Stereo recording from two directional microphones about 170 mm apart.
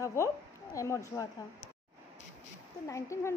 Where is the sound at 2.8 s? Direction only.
15° left (ahead or behind).